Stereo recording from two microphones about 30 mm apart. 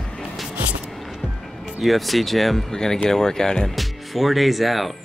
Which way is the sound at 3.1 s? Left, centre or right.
Centre.